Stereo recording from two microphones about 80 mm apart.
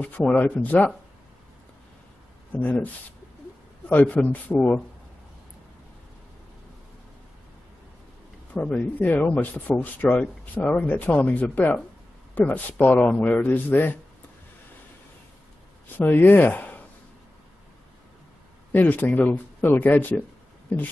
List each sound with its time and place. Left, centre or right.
0.0 s speech: centre
2.5 s speech: left
3.9 s speech: centre
8.5 s speech: centre
16.0 s speech: left
18.7 s speech: left